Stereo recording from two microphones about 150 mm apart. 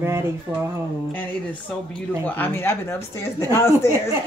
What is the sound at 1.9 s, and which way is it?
Speech, 10° left (ahead or behind).